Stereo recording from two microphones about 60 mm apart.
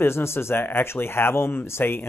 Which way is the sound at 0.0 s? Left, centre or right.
Left.